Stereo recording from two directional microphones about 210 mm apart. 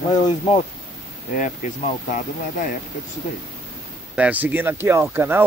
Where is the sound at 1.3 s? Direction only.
40° left (ahead or behind).